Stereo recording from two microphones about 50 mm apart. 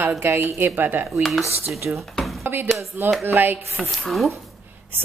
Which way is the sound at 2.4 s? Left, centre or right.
Right.